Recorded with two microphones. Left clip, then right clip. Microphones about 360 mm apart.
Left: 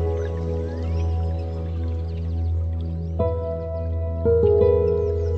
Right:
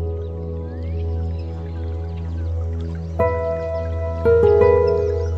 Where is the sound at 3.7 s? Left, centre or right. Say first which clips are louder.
Right 6 dB; right.